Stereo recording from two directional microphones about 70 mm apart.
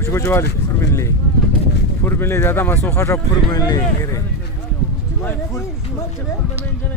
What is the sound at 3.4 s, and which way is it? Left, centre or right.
Speech, left.